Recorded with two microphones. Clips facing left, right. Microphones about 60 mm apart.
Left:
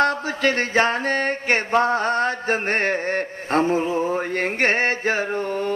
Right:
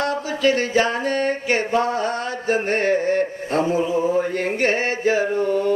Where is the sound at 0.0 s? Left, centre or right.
Left.